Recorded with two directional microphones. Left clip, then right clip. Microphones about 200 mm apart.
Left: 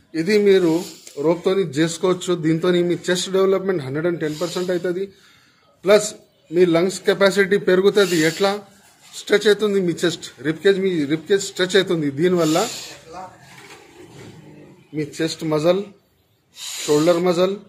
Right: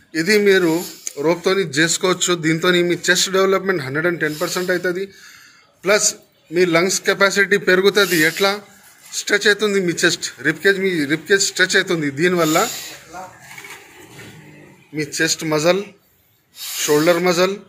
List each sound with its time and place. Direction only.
0.1 s a man's voice: 5° left (ahead or behind)
15.0 s a man's voice: 5° left (ahead or behind)